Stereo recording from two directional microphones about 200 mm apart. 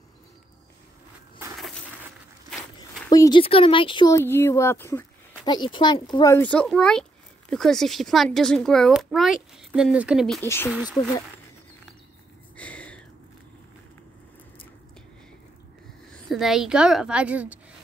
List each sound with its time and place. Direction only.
2.5 s walk: centre (ahead or behind)
3.1 s speech: 20° left (ahead or behind)
4.1 s speech: 10° left (ahead or behind)
10.4 s speech: 10° left (ahead or behind)
12.5 s a sound: 5° left (ahead or behind)
16.3 s speech: centre (ahead or behind)